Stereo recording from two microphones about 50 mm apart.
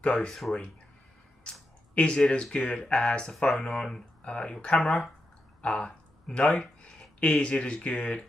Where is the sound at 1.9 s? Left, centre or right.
Centre.